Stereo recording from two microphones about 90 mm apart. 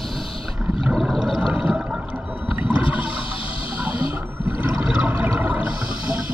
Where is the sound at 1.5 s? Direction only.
10° right (ahead or behind).